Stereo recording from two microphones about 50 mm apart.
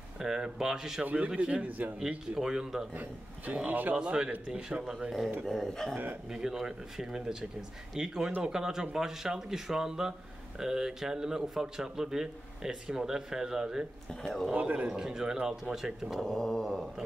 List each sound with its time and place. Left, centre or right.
0.2 s a man's voice: centre; by 2.0 s right
2.0 s a man's voice: centre
2.9 s a man's voice: right
4.0 s a man's voice: centre
5.5 s a man's voice: centre
6.3 s a man's voice: centre
14.2 s mantra: centre
14.5 s a man's voice: right
15.0 s a man's voice: centre
16.2 s mantra: centre